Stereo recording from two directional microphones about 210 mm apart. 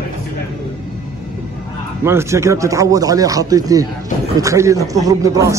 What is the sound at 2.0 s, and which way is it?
Speech, 15° right (ahead or behind).